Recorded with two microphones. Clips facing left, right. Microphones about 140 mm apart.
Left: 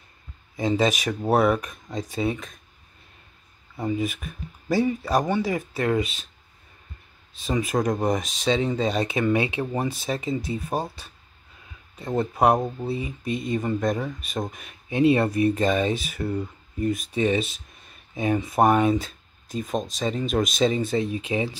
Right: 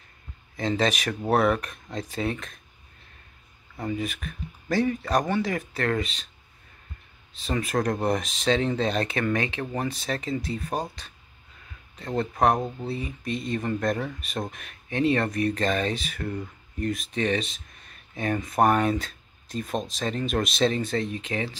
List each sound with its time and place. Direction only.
0.6 s speech: 10° left (ahead or behind)
4.0 s speech: 5° left (ahead or behind)
7.6 s speech: centre (ahead or behind)
10.2 s speech: 15° left (ahead or behind)
10.7 s speech: 5° left (ahead or behind)
13.2 s speech: 5° left (ahead or behind)
14.9 s speech: 10° left (ahead or behind)